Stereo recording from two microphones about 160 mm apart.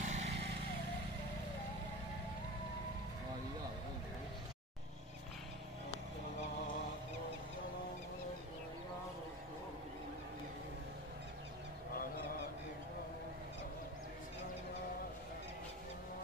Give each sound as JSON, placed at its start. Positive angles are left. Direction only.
{"t": 0.0, "sound": "vehicle", "side_deg": -45}